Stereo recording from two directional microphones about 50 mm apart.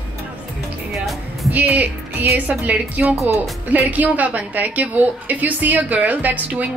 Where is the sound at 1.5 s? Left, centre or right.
Right.